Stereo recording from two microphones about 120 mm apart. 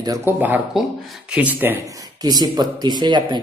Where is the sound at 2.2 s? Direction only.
35° right (ahead or behind).